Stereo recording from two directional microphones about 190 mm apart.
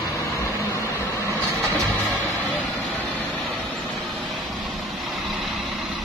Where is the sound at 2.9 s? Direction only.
10° left (ahead or behind).